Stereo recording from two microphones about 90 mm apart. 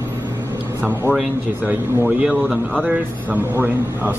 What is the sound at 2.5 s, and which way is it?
Speech, 15° left (ahead or behind).